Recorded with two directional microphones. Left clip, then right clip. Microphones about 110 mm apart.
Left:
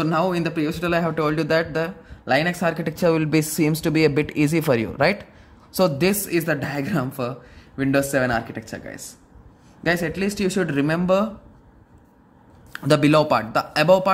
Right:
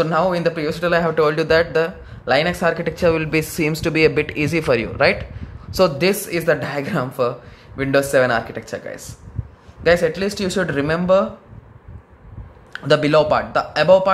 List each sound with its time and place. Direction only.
0.0 s speech: 35° left (ahead or behind)
12.7 s speech: 45° left (ahead or behind)